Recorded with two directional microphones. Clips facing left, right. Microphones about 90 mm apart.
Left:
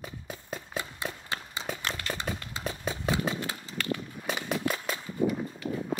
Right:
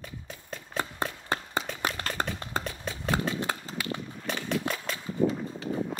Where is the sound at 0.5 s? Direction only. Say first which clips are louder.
Left 2 dB; 10° left (ahead or behind).